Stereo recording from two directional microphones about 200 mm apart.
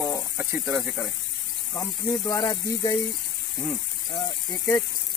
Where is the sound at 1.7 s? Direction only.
20° left (ahead or behind).